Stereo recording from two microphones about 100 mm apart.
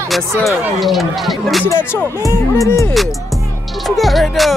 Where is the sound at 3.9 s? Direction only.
Centre (ahead or behind).